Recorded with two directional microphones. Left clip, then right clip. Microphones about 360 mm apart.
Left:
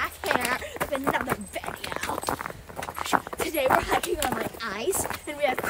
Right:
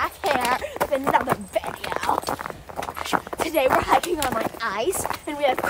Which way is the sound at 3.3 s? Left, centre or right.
Centre.